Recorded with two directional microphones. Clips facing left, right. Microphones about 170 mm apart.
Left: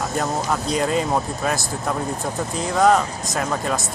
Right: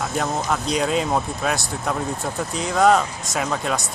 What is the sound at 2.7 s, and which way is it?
Speech, centre (ahead or behind).